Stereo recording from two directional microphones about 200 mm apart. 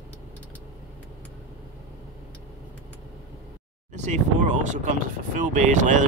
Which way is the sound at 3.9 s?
35° right (ahead or behind).